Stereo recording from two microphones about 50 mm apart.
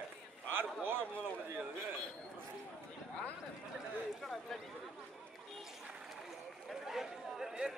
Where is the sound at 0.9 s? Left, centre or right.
Right.